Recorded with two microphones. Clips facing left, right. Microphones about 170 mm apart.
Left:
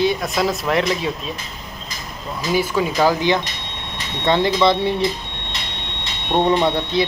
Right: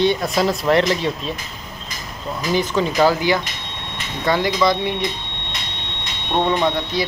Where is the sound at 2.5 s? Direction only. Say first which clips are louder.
Even; 10° left (ahead or behind); by 4.9 s 25° left (ahead or behind).